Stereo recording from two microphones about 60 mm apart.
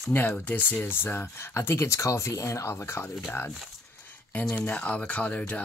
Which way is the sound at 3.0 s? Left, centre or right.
Left.